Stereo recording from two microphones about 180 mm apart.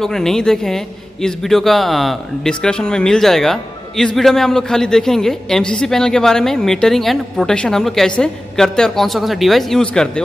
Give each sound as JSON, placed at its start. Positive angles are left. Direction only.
{"t": 0.0, "sound": "a man's voice", "side_deg": 0}